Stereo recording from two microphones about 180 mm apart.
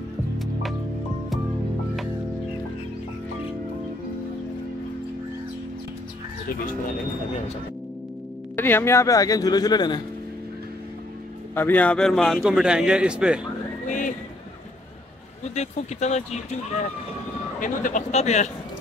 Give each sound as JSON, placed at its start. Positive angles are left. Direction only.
{"t": 0.4, "sound": "music", "side_deg": 0}
{"t": 8.5, "sound": "speech", "side_deg": 10}
{"t": 11.5, "sound": "a man's voice", "side_deg": 10}
{"t": 13.8, "sound": "a sound", "side_deg": 45}
{"t": 15.4, "sound": "speech", "side_deg": 40}
{"t": 17.6, "sound": "speech", "side_deg": 45}